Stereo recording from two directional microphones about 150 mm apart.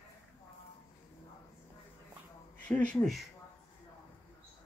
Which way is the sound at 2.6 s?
10° left (ahead or behind).